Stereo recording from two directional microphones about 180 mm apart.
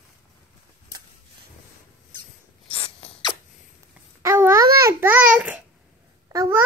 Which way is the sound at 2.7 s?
30° left (ahead or behind).